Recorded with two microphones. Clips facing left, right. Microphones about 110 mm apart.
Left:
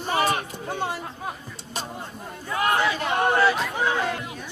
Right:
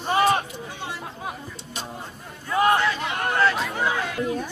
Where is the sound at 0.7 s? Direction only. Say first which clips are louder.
Left 6 dB; 50° left (ahead or behind).